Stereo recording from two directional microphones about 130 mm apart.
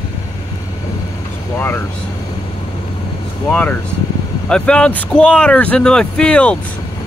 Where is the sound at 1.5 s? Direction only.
15° left (ahead or behind).